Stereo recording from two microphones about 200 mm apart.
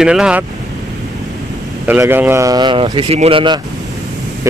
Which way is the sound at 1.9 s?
10° right (ahead or behind).